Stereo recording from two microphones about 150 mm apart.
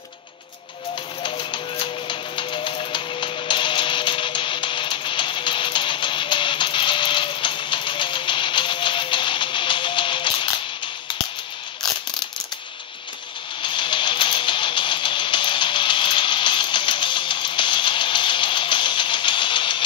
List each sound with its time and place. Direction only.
1.2 s music: 35° left (ahead or behind)
13.6 s music: 35° left (ahead or behind)